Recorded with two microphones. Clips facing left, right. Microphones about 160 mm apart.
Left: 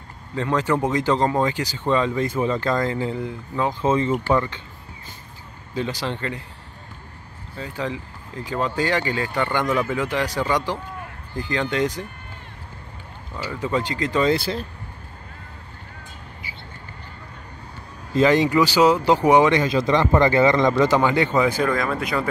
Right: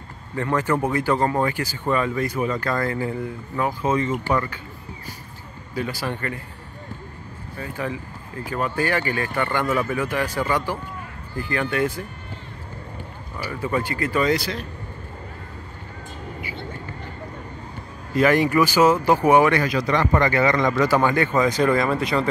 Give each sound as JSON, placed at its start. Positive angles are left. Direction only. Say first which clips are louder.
{"t": 0.4, "sound": "speech", "louder": "left 1 dB", "side_deg": 15}
{"t": 5.8, "sound": "speech", "louder": "left 1 dB", "side_deg": 20}
{"t": 7.5, "sound": "speech", "louder": "left 1 dB", "side_deg": 20}
{"t": 13.6, "sound": "speech", "louder": "left 1 dB", "side_deg": 20}
{"t": 18.1, "sound": "speech", "louder": "left 1 dB", "side_deg": 20}
{"t": 21.6, "sound": "speech", "louder": "right 3 dB", "side_deg": 0}